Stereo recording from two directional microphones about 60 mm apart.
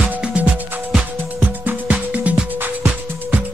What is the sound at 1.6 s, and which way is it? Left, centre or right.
Music, right.